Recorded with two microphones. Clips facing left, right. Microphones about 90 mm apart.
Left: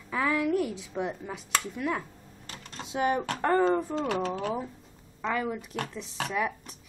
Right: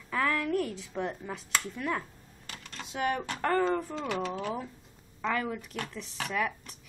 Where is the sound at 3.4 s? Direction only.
20° left (ahead or behind).